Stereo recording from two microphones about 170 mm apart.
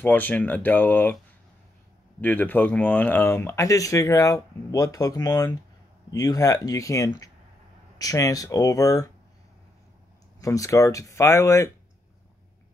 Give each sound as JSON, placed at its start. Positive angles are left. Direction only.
{"t": 0.0, "sound": "speech", "side_deg": 10}
{"t": 2.2, "sound": "speech", "side_deg": 10}
{"t": 10.4, "sound": "speech", "side_deg": 20}